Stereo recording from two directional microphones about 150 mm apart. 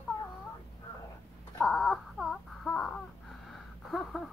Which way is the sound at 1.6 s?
Centre (ahead or behind).